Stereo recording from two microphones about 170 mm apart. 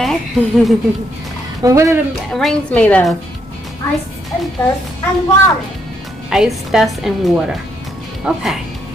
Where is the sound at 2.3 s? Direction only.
5° left (ahead or behind).